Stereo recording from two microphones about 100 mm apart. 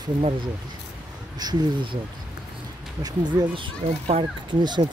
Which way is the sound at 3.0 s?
45° right (ahead or behind).